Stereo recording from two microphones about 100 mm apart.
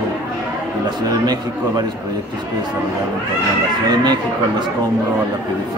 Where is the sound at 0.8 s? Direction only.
40° right (ahead or behind).